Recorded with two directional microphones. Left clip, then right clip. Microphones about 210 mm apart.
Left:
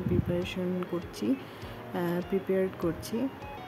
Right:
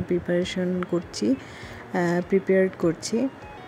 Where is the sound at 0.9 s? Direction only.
20° right (ahead or behind).